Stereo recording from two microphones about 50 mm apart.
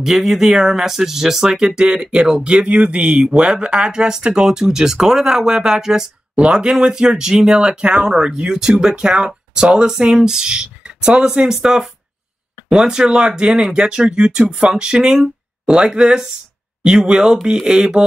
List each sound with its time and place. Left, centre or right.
0.0 s speech: centre
6.3 s speech: right